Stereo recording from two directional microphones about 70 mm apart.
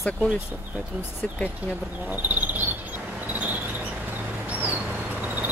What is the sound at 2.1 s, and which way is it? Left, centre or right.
Cricket, right.